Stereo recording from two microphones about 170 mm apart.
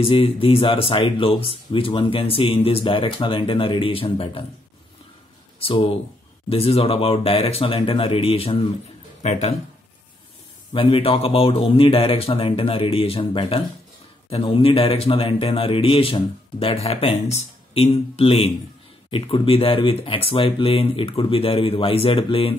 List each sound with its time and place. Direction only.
0.0 s speech: 35° left (ahead or behind)
5.6 s speech: 35° left (ahead or behind)
10.7 s speech: 30° left (ahead or behind)